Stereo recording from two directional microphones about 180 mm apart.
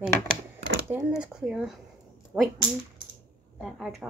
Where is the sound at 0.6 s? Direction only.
85° right.